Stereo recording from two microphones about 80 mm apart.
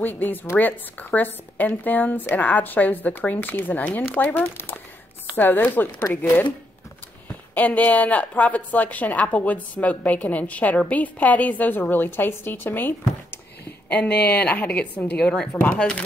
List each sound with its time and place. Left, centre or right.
0.0 s a woman's voice: left
5.9 s speech: left
7.5 s a woman's voice: centre